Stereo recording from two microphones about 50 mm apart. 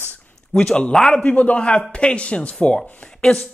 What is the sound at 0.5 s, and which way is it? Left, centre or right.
Speech, left.